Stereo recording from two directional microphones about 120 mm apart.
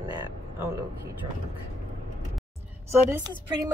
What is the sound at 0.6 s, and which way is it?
Speech, 20° right (ahead or behind).